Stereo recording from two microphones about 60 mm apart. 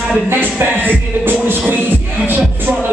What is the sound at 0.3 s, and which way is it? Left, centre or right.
Music, right.